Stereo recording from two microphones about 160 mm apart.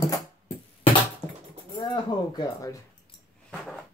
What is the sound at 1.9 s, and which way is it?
Speech, 25° left (ahead or behind).